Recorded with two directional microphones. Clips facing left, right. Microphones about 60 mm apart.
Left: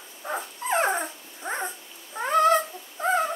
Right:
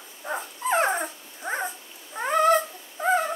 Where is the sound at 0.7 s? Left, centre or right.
Centre.